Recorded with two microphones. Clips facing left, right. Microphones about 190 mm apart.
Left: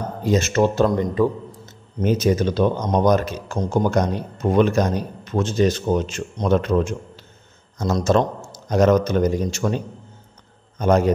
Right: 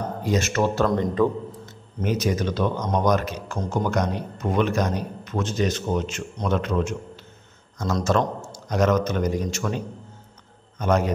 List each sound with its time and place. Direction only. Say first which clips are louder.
0.2 s a man's voice: left 5 dB; 25° left (ahead or behind)
10.8 s a man's voice: left 4 dB; 30° left (ahead or behind)